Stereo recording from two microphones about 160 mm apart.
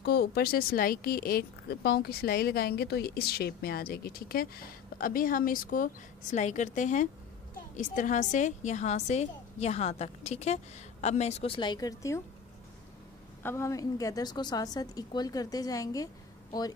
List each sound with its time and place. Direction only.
0.0 s speech: 75° left (ahead or behind); by 5.9 s 60° left (ahead or behind)
6.3 s a woman's voice: 45° left (ahead or behind); by 12.2 s 20° left (ahead or behind)
13.4 s a woman's voice: 15° left (ahead or behind)